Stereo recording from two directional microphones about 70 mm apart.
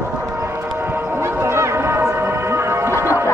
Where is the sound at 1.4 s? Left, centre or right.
Right.